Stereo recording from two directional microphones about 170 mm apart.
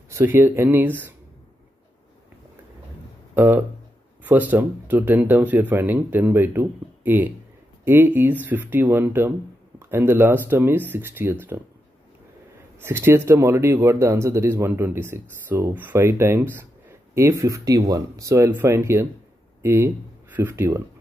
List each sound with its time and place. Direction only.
0.1 s speech: 15° right (ahead or behind)
3.3 s speech: 10° right (ahead or behind)
12.8 s speech: 15° right (ahead or behind)